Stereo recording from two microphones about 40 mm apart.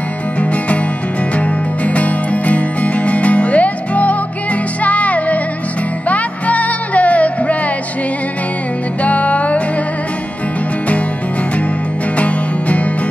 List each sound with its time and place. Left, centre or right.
1.9 s music: left
9.0 s music: left
12.2 s music: left